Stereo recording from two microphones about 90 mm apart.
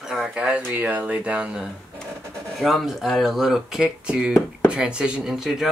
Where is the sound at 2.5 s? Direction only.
Centre (ahead or behind).